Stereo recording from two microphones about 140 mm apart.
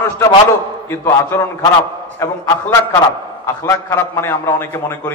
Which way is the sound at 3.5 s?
20° left (ahead or behind).